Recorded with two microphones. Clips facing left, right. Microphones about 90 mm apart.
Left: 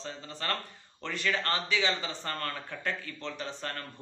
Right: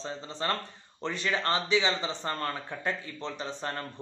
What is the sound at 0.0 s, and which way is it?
A man's voice, 25° right (ahead or behind).